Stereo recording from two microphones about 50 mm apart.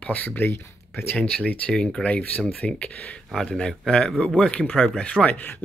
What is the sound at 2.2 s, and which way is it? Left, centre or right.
Speech, left.